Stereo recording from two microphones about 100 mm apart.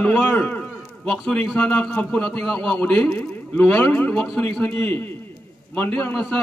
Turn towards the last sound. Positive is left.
turn(degrees=10)  # may be behind; listen again after turning